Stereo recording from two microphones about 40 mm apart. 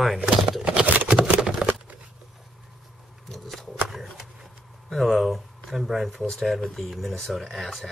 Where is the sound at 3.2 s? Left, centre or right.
Centre.